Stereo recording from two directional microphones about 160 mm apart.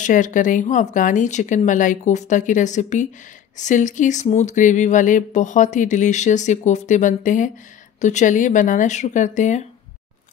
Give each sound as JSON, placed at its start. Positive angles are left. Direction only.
{"t": 0.0, "sound": "speech", "side_deg": 55}